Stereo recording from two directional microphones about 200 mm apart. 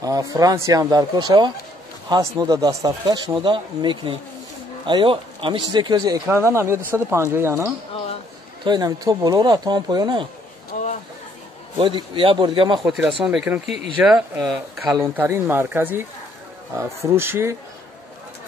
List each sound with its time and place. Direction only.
0.0 s speech: 15° right (ahead or behind)
10.7 s chatter: 40° left (ahead or behind)
11.8 s speech: 25° right (ahead or behind)
12.8 s speech: 10° right (ahead or behind)
15.1 s speech: 10° right (ahead or behind)